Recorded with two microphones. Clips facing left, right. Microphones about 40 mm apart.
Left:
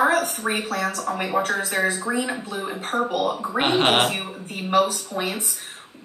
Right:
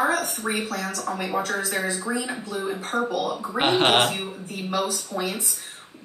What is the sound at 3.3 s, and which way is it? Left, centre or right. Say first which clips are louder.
Speech: left 3 dB; centre.